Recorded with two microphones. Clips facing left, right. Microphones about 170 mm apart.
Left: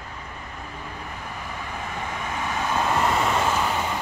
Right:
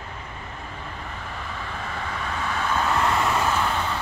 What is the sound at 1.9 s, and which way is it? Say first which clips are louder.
Vehicle: even; 20° left (ahead or behind).